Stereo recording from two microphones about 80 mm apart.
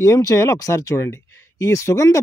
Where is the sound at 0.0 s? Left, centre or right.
Left.